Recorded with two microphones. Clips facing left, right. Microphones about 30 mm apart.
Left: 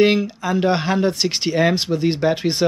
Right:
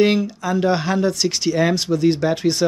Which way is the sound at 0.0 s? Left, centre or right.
Centre.